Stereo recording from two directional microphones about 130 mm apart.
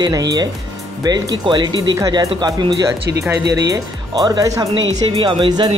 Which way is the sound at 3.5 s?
30° right (ahead or behind).